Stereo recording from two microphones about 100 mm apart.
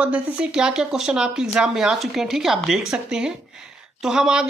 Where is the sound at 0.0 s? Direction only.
10° right (ahead or behind).